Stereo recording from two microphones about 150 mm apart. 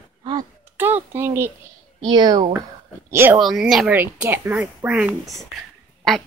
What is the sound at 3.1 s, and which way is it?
Speech, 15° right (ahead or behind).